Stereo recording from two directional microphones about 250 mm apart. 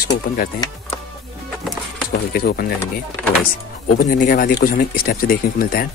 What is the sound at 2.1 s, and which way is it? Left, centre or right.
Speech, left.